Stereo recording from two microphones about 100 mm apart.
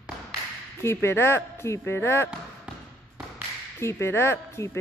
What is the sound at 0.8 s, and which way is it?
Speech, 25° left (ahead or behind).